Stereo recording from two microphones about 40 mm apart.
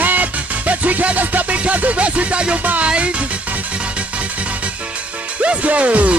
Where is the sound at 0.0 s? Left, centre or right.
Right.